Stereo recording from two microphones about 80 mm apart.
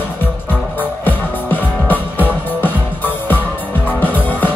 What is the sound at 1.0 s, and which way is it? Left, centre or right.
Music, left.